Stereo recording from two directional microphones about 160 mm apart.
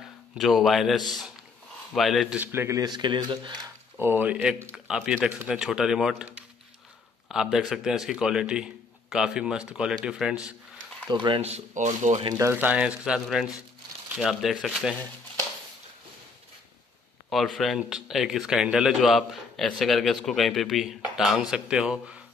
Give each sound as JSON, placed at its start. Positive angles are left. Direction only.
{"t": 0.4, "sound": "speech", "side_deg": 0}
{"t": 4.0, "sound": "speech", "side_deg": -10}
{"t": 11.1, "sound": "speech", "side_deg": -30}
{"t": 12.4, "sound": "speech", "side_deg": -15}
{"t": 17.3, "sound": "speech", "side_deg": 0}